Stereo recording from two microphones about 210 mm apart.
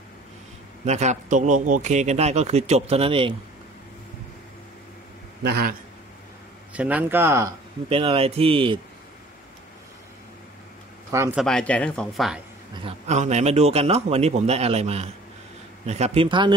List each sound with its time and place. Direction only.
0.8 s a man's voice: 35° right (ahead or behind)
5.4 s a man's voice: 50° right (ahead or behind)
6.7 s speech: 5° right (ahead or behind)
7.9 s speech: 25° right (ahead or behind)
11.1 s speech: 15° right (ahead or behind)
11.3 s speech: centre (ahead or behind)
12.8 s a man's voice: 30° right (ahead or behind)